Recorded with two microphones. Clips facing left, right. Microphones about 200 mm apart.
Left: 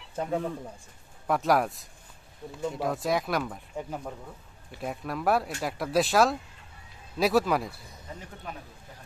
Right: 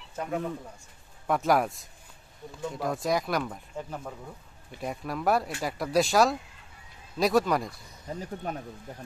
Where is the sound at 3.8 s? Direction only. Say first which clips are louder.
Left 2 dB; 10° left (ahead or behind).